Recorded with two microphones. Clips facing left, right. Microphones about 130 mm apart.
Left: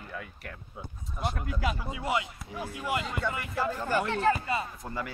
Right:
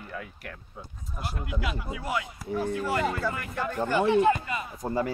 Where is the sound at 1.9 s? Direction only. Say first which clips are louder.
Even; 25° left (ahead or behind).